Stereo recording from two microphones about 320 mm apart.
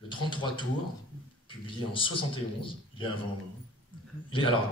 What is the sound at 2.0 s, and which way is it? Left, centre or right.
Speech, centre.